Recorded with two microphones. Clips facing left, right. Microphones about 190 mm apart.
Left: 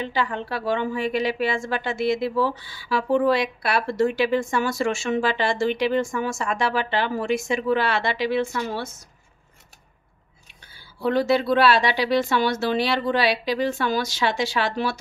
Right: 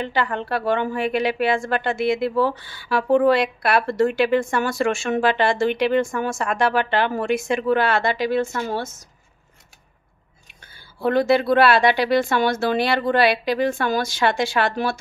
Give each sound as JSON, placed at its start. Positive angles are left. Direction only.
{"t": 0.0, "sound": "a woman's voice", "side_deg": -55}
{"t": 11.0, "sound": "speech", "side_deg": -50}